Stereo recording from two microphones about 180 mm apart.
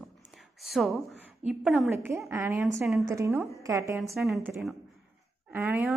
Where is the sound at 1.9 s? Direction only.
15° right (ahead or behind).